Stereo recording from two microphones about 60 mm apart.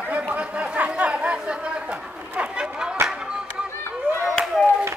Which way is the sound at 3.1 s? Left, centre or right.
Centre.